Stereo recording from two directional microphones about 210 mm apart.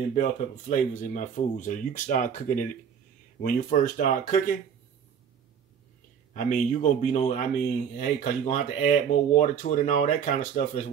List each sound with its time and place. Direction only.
0.1 s speech: 35° left (ahead or behind)
6.3 s speech: 35° left (ahead or behind)